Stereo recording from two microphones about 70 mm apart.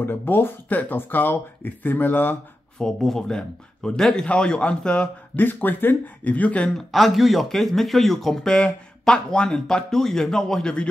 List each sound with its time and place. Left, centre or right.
0.0 s speech: left
2.8 s speech: centre
5.3 s speech: left
6.9 s speech: centre